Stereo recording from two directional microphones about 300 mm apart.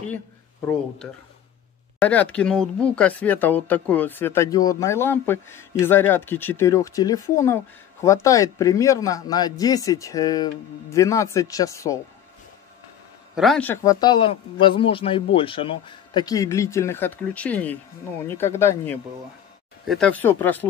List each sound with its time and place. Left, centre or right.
2.0 s speech: centre
13.3 s speech: centre